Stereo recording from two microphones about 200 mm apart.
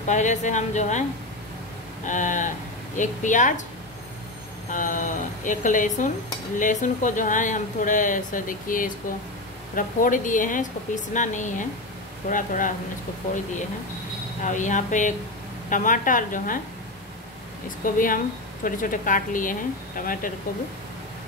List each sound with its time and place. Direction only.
0.0 s speech: 35° left (ahead or behind)
2.0 s speech: 40° left (ahead or behind)
4.6 s speech: 40° left (ahead or behind)
14.4 s speech: 40° left (ahead or behind)
17.8 s a woman's voice: 45° left (ahead or behind)